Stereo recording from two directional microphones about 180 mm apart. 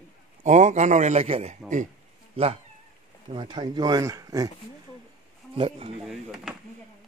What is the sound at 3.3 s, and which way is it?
Speech, 25° right (ahead or behind).